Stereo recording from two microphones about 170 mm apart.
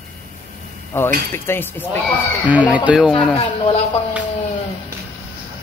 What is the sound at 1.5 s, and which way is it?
Speech, 10° left (ahead or behind).